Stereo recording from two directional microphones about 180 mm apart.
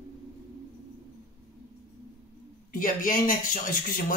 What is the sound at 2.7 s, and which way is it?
Speech, 50° left (ahead or behind).